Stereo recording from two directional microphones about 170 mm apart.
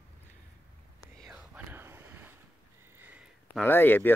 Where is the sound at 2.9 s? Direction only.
10° right (ahead or behind).